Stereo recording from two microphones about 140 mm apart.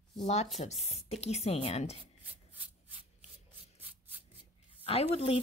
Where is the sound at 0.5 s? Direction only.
50° left (ahead or behind).